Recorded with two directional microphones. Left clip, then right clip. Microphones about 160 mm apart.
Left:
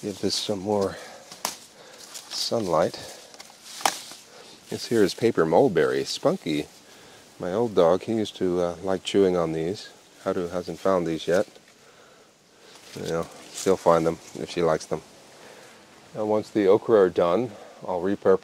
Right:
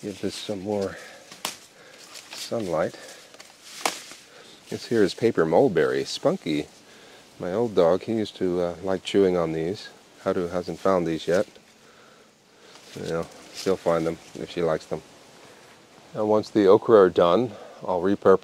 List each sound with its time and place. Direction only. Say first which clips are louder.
0.0 s speech: left 4 dB; 20° left (ahead or behind)
0.9 s a sound: left 1 dB; 15° left (ahead or behind)
2.5 s speech: left 2 dB; 15° left (ahead or behind)
4.6 s speech: even; 10° left (ahead or behind)
12.9 s speech: left 1 dB; 5° left (ahead or behind)
16.2 s speech: right 3 dB; 15° right (ahead or behind)